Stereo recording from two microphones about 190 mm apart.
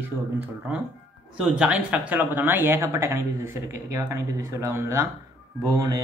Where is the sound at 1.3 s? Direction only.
5° right (ahead or behind).